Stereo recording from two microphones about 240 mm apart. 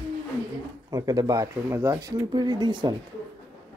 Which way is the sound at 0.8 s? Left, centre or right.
Centre.